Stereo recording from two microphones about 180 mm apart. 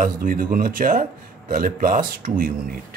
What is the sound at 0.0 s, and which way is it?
A man's voice, 50° right (ahead or behind).